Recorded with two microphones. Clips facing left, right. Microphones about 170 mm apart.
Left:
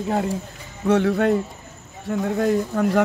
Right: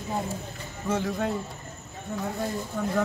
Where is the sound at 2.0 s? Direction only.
90° left.